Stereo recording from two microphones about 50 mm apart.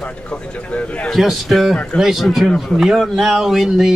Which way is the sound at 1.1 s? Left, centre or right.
Centre.